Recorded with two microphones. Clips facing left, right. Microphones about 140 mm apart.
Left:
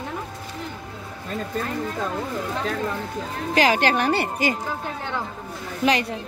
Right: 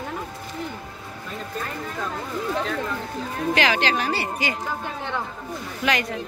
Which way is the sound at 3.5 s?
40° left (ahead or behind).